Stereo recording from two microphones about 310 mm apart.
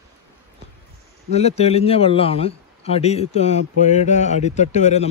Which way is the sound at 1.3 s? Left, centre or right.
Left.